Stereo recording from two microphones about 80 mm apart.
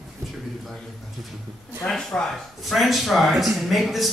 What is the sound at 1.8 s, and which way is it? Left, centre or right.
Speech, centre.